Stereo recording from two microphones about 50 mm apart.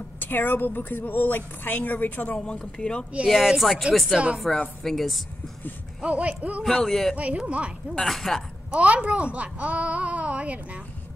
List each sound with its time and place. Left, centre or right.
0.2 s a woman's voice: left
2.6 s speech: centre
3.3 s speech: centre
6.0 s speech: right
6.6 s speech: centre
7.2 s speech: right
8.0 s speech: centre
8.7 s speech: right